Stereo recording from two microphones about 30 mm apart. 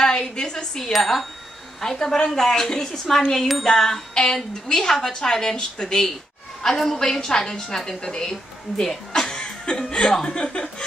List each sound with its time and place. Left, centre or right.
0.0 s a woman's voice: left
0.9 s a woman's voice: centre; by 5.9 s left
6.6 s a woman's voice: centre
9.3 s chuckle: left
10.2 s speech: left